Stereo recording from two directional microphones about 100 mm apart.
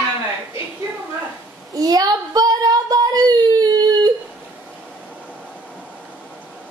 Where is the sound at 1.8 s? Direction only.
40° right (ahead or behind).